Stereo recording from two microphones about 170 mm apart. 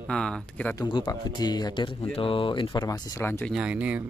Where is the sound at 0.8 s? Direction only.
30° left (ahead or behind); by 3.5 s 15° left (ahead or behind).